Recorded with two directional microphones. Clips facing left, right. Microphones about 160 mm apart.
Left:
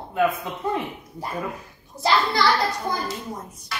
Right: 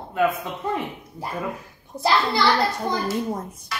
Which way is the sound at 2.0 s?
55° right (ahead or behind).